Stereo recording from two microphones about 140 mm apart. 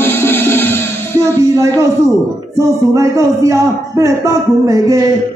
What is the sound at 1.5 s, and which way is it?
A man's voice, 25° right (ahead or behind).